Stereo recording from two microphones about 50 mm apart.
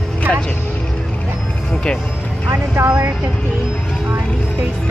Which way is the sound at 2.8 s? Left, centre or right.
Right.